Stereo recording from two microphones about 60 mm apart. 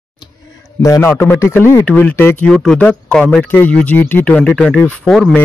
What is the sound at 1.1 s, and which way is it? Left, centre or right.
Speech, left.